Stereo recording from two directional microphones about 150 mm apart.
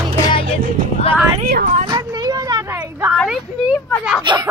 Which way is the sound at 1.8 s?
30° right (ahead or behind).